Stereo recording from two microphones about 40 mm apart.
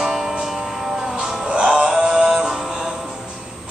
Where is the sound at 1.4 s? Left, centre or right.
Right.